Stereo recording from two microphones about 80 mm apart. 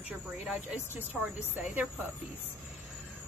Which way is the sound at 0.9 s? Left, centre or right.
Right.